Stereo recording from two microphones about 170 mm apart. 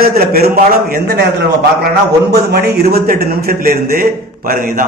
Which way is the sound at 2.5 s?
70° right (ahead or behind).